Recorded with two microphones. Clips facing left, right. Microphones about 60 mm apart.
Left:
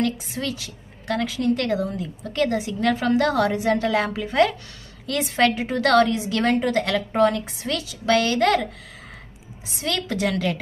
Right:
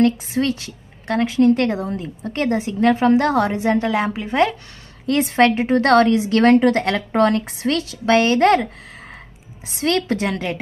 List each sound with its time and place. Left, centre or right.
0.0 s a woman's voice: right
5.0 s a woman's voice: right
6.1 s a woman's voice: right
7.2 s a woman's voice: right
9.7 s a woman's voice: right
9.9 s a woman's voice: right